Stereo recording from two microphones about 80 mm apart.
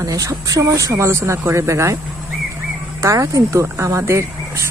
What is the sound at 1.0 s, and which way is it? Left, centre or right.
Speech, right.